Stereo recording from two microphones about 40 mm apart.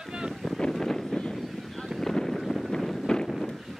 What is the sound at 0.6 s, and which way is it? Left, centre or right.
Wind noise, centre.